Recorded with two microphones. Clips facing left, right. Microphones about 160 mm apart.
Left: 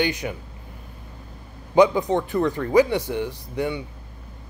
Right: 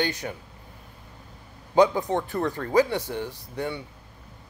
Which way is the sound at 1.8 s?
15° left (ahead or behind).